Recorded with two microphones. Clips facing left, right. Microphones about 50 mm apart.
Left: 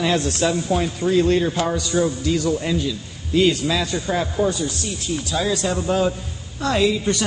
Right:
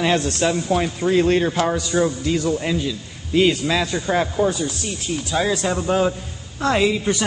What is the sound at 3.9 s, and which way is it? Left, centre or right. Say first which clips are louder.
Speech: right 2 dB; right.